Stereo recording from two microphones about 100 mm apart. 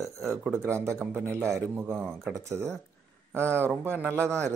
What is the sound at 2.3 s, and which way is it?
Speech, 30° right (ahead or behind).